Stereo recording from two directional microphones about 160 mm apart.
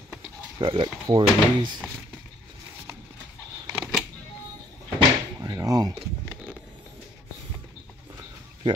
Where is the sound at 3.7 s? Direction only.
10° right (ahead or behind).